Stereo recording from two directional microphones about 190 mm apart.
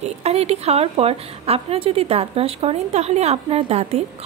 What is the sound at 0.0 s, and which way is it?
A woman's voice, 35° right (ahead or behind).